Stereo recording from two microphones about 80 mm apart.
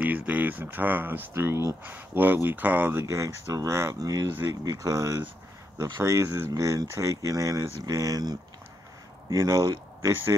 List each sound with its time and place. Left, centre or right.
0.0 s speech: centre; by 1.8 s right
1.8 s speech: right
4.0 s speech: right